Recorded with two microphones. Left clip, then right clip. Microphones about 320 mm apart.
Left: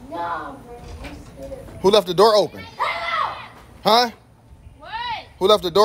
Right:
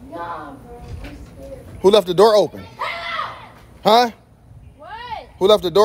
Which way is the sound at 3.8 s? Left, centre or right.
Centre.